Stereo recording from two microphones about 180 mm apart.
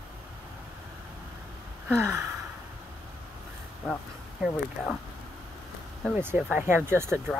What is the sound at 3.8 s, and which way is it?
Speech, centre (ahead or behind).